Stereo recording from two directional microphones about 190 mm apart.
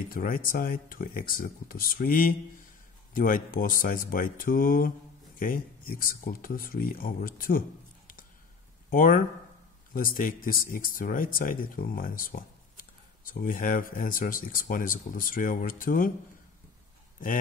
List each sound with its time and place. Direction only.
0.1 s speech: 45° left (ahead or behind)
8.9 s speech: 45° left (ahead or behind)